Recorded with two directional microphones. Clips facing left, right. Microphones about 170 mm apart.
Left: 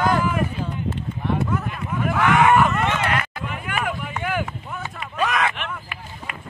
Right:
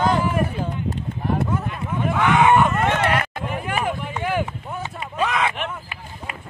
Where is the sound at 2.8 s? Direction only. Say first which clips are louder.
Right 3 dB; 55° right (ahead or behind).